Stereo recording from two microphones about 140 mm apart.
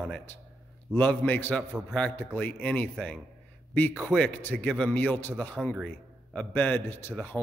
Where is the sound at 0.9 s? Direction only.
15° left (ahead or behind).